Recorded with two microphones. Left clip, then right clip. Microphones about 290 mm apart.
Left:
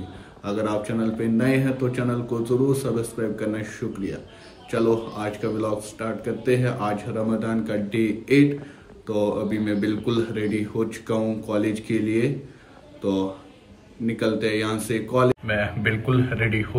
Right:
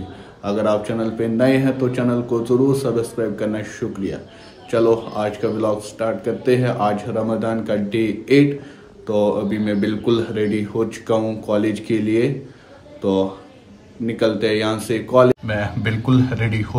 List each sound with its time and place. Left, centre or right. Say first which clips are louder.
0.4 s speech: right 7 dB; centre
16.1 s speech: right 5 dB; centre